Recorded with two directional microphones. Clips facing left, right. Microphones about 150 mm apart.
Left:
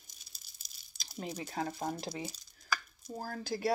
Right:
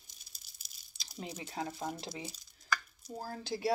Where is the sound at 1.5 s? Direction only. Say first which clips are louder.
Left 2 dB; 40° left (ahead or behind).